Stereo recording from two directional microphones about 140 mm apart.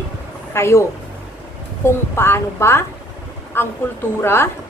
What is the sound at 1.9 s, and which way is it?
A woman's voice, 15° left (ahead or behind).